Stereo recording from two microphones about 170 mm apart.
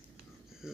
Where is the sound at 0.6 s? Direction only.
5° right (ahead or behind).